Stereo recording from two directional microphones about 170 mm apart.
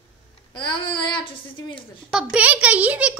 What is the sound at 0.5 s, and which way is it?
Child singing, 30° left (ahead or behind).